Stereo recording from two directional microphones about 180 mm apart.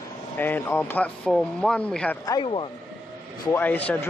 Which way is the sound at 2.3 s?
30° left (ahead or behind).